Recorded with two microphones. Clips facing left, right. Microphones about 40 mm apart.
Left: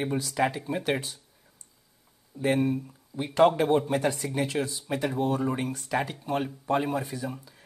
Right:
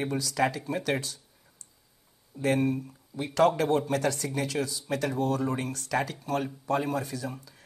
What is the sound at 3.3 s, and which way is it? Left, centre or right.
Speech, left.